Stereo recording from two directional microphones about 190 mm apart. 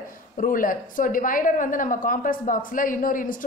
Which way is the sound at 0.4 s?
45° left (ahead or behind).